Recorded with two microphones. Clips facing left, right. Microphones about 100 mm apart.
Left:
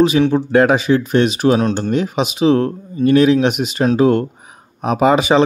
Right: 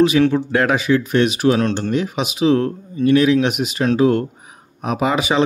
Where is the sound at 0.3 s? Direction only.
25° left (ahead or behind).